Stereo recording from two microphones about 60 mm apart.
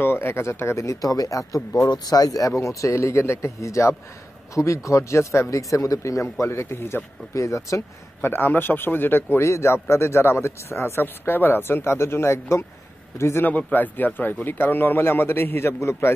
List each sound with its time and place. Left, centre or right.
0.0 s a man's voice: left
1.8 s speech: left
7.3 s speech: left
8.2 s speech: left
9.4 s a man's voice: left
13.5 s speech: left